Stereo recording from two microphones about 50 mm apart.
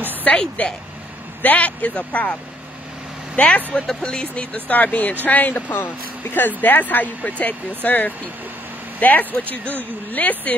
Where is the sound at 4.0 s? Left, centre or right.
Centre.